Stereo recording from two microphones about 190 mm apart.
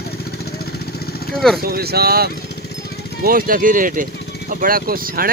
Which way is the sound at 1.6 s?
55° right (ahead or behind).